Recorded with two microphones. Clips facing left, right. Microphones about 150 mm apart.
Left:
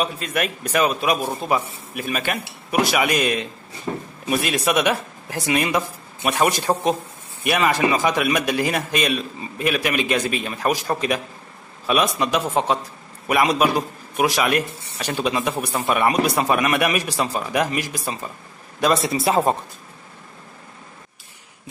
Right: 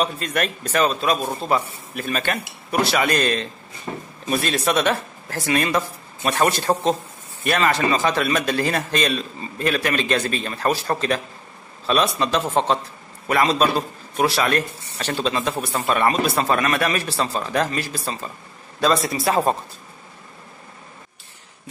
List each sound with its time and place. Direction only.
0.0 s a man's voice: 5° left (ahead or behind)